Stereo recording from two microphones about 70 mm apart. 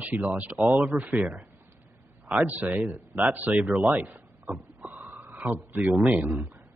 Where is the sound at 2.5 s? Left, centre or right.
Right.